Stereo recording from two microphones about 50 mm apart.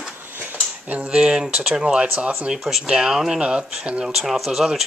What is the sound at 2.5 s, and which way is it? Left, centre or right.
Speech, centre.